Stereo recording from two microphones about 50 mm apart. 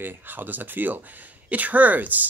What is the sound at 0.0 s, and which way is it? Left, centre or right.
Speech, right.